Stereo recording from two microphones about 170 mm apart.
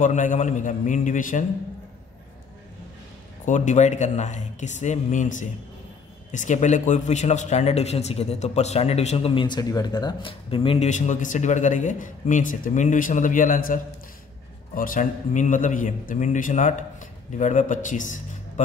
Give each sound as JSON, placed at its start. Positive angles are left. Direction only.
{"t": 0.0, "sound": "a man's voice", "side_deg": 50}
{"t": 3.4, "sound": "a man's voice", "side_deg": 45}
{"t": 10.9, "sound": "a man's voice", "side_deg": 45}
{"t": 14.8, "sound": "a man's voice", "side_deg": 50}